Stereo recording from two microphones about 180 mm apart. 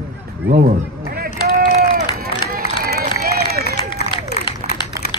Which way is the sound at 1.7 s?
50° right (ahead or behind).